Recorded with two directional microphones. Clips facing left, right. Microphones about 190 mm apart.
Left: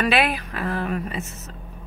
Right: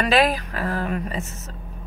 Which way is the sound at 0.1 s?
40° right (ahead or behind).